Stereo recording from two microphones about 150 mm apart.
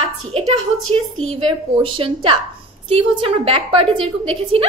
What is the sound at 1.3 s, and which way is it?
A woman's voice, 35° right (ahead or behind).